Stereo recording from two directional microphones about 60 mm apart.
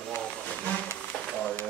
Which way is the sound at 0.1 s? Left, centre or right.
Centre.